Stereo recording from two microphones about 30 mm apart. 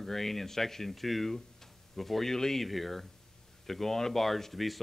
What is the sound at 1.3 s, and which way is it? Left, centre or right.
Tick-tock, centre.